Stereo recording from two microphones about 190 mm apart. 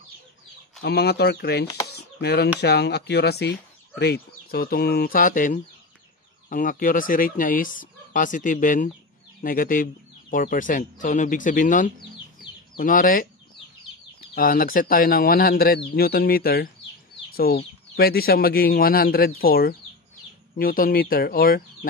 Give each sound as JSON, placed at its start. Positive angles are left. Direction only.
{"t": 0.8, "sound": "speech", "side_deg": 60}
{"t": 1.9, "sound": "a sound", "side_deg": 60}
{"t": 2.6, "sound": "speech", "side_deg": 60}
{"t": 14.3, "sound": "speech", "side_deg": 50}